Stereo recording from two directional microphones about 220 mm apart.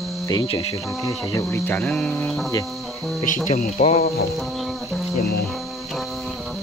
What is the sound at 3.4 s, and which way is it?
Speech, 40° left (ahead or behind).